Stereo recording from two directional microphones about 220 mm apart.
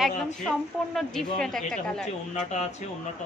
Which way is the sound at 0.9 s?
Centre (ahead or behind).